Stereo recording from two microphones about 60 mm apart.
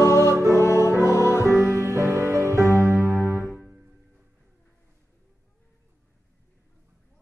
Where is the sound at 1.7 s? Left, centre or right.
Right.